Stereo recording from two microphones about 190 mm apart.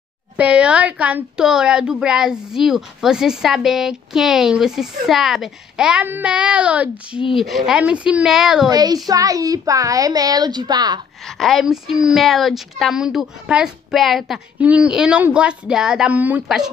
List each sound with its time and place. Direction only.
0.4 s speech: 5° right (ahead or behind)
8.6 s a child's voice: 20° right (ahead or behind)
11.2 s speech: centre (ahead or behind)